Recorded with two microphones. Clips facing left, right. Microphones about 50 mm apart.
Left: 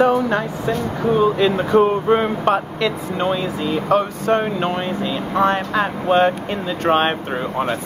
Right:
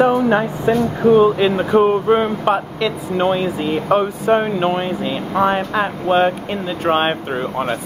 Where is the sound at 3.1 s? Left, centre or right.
Centre.